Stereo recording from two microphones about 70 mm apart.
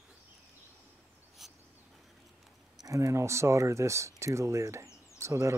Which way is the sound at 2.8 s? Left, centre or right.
Right.